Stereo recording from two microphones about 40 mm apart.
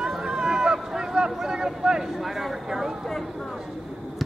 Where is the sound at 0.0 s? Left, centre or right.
Centre.